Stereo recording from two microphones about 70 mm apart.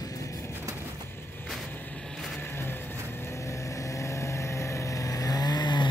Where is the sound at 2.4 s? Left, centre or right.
Left.